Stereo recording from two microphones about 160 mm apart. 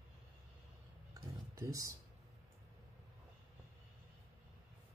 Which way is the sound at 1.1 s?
20° right (ahead or behind).